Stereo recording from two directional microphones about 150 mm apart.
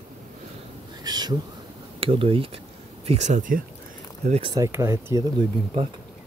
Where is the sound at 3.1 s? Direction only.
50° right (ahead or behind).